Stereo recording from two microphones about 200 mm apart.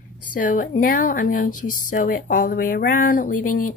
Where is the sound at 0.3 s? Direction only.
40° left (ahead or behind).